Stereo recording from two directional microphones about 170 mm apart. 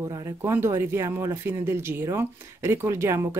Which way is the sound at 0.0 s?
20° right (ahead or behind).